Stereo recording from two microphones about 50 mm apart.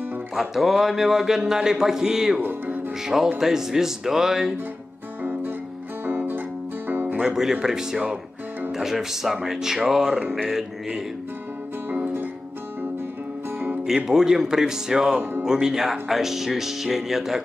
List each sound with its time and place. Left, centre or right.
0.4 s speech: centre
2.4 s music: right
3.3 s speech: centre
5.2 s music: right
7.2 s speech: centre
11.9 s music: right
13.8 s speech: centre